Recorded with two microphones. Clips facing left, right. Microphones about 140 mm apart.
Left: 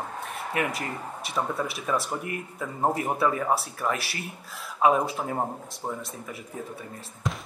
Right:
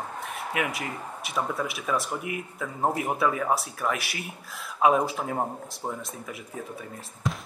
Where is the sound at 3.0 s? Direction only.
5° right (ahead or behind).